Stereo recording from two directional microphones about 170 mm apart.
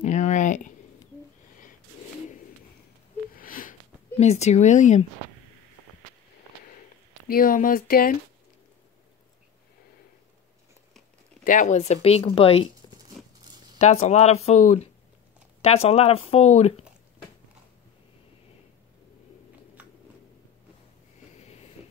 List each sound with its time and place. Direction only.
0.0 s a sound: 45° left (ahead or behind)
3.3 s sniff: 55° left (ahead or behind)
4.2 s speech: 40° left (ahead or behind)
7.2 s speech: 55° left (ahead or behind)
11.4 s speech: 45° left (ahead or behind)
13.7 s speech: 40° left (ahead or behind)
21.4 s vehicle: 40° left (ahead or behind)